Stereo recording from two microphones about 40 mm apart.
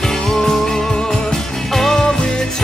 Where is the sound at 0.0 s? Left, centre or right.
Centre.